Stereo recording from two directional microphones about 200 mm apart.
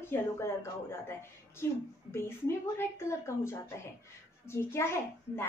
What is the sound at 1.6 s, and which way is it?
A woman's voice, 15° left (ahead or behind).